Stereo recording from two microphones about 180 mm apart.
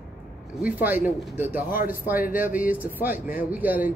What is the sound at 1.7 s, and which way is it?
Speech, 55° left (ahead or behind).